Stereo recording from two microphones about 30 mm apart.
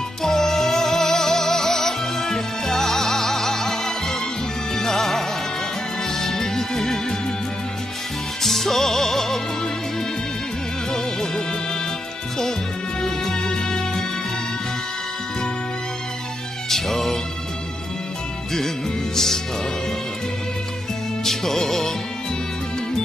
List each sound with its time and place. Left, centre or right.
0.2 s music: centre
8.4 s music: centre
10.9 s music: centre
13.0 s music: left
16.6 s music: centre
19.1 s music: centre
21.2 s music: centre